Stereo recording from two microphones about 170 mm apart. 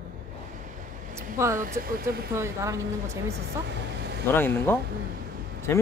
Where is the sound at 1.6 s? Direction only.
60° right (ahead or behind).